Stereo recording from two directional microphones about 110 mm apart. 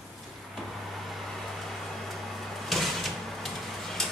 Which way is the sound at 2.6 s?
Centre (ahead or behind).